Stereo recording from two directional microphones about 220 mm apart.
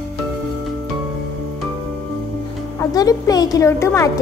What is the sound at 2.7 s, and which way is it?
Music, 15° left (ahead or behind).